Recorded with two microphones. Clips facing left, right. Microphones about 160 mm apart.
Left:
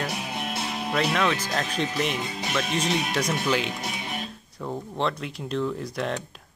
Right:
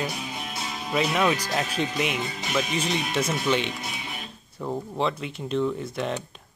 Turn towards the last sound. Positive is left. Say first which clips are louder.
# even
turn(degrees=0)  # may be behind; listen again after turning